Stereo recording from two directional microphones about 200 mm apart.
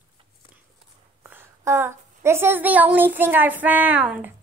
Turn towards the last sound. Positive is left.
turn(degrees=-5)  # may be behind; listen again after turning